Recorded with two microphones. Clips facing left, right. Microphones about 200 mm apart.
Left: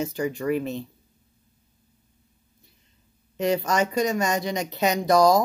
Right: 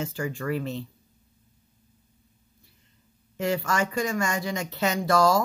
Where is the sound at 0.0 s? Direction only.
20° left (ahead or behind).